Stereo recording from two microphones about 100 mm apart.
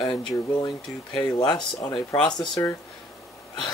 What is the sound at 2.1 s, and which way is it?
Speech, 30° left (ahead or behind).